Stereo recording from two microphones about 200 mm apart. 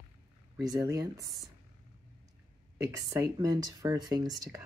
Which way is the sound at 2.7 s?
15° right (ahead or behind).